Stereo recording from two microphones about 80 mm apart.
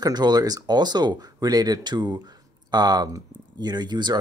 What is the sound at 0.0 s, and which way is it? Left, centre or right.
Speech, right.